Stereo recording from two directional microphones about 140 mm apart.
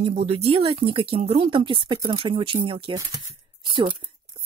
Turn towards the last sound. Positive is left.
turn(degrees=-35)  # may be behind; listen again after turning